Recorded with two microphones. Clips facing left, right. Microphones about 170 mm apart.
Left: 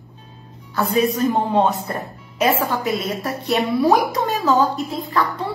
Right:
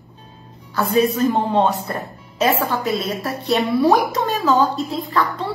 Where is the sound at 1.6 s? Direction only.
Centre (ahead or behind).